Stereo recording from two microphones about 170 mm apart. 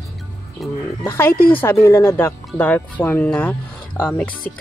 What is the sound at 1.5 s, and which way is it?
A woman's voice, 10° left (ahead or behind).